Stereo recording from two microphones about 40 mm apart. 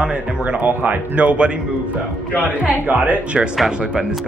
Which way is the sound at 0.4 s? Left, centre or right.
Right.